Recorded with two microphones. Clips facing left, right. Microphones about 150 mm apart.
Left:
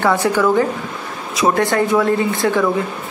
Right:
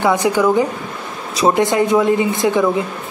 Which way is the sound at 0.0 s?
15° right (ahead or behind).